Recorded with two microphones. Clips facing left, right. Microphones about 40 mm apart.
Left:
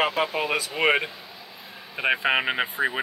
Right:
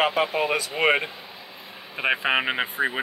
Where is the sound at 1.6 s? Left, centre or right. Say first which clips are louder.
Even; centre.